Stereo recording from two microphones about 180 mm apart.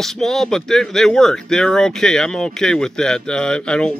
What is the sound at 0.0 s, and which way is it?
Speech, centre (ahead or behind).